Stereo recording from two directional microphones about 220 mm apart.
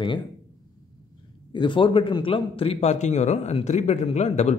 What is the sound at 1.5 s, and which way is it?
A man's voice, 20° left (ahead or behind).